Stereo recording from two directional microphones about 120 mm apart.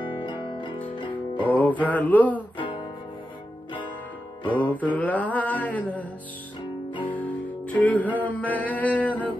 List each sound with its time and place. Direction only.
0.2 s music: 40° left (ahead or behind)
1.5 s music: 15° left (ahead or behind)
2.5 s music: 45° left (ahead or behind)
4.6 s music: 15° left (ahead or behind)
7.1 s music: 15° left (ahead or behind)